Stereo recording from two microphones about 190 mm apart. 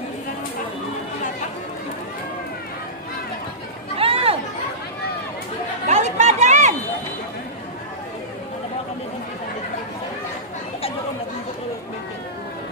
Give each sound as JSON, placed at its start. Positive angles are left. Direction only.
{"t": 4.0, "sound": "chatter", "side_deg": -30}
{"t": 5.9, "sound": "chatter", "side_deg": -35}